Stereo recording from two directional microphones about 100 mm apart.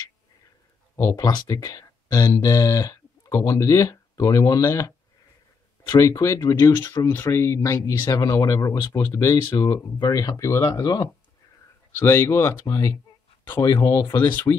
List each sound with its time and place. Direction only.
0.9 s speech: 40° left (ahead or behind)
12.0 s speech: 25° left (ahead or behind)